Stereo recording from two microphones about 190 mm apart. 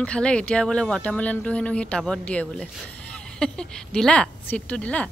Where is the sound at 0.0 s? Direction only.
5° left (ahead or behind).